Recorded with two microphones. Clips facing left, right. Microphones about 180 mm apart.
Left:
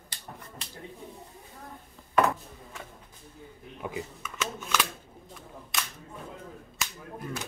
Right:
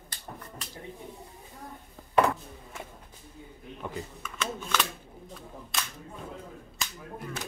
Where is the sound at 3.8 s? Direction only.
10° left (ahead or behind).